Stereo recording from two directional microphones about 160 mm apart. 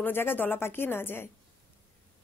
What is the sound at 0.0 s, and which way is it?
A woman's voice, 15° left (ahead or behind).